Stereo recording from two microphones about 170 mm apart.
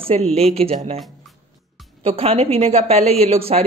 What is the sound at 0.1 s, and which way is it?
Speech, 35° right (ahead or behind).